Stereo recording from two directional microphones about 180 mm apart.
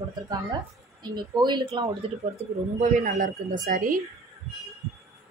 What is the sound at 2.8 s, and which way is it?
Speech, 45° right (ahead or behind).